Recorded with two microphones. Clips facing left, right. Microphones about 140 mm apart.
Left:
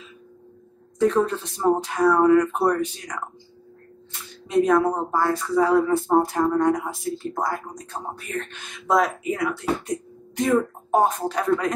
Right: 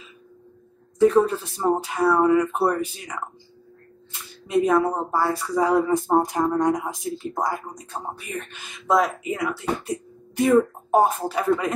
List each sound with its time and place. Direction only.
0.9 s speech: 5° right (ahead or behind)
4.5 s speech: 5° right (ahead or behind)